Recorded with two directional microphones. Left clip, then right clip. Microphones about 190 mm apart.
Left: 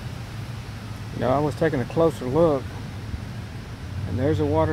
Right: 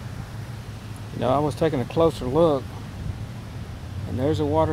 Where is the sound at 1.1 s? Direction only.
10° right (ahead or behind).